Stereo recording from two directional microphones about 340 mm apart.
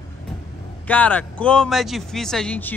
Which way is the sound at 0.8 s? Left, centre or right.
Centre.